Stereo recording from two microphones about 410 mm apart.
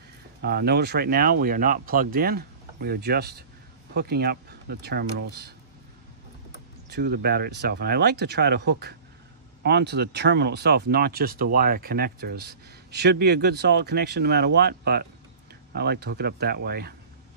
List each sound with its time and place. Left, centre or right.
0.4 s speech: right
6.9 s speech: right